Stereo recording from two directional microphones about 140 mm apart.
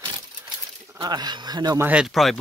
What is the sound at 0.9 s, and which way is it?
Speech, 30° right (ahead or behind).